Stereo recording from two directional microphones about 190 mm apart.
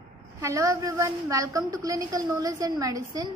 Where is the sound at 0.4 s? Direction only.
15° right (ahead or behind).